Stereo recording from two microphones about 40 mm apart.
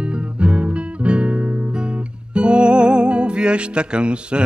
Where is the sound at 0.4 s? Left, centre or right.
Right.